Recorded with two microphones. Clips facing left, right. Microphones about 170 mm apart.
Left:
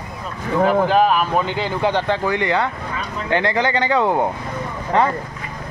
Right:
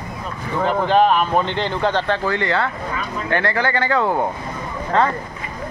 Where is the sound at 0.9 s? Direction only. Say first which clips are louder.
Right 1 dB; 5° left (ahead or behind).